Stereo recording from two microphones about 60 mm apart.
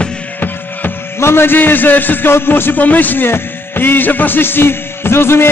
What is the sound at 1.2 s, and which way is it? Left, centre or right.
A man's voice, left.